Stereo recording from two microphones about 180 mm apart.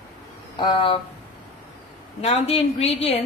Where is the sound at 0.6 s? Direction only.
30° left (ahead or behind).